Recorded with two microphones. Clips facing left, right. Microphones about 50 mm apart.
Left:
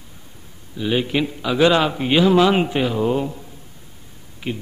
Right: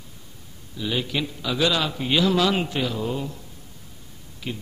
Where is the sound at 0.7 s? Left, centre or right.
Left.